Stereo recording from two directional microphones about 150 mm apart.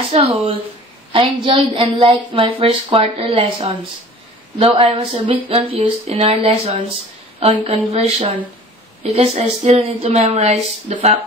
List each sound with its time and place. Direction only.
0.1 s a woman's voice: 45° right (ahead or behind)